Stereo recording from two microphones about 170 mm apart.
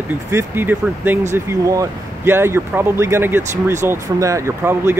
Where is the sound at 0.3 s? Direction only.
15° right (ahead or behind).